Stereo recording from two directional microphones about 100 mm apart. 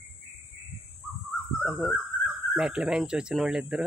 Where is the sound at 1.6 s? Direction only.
Centre (ahead or behind).